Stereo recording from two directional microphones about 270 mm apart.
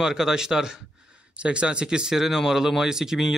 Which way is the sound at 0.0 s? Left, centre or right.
Centre.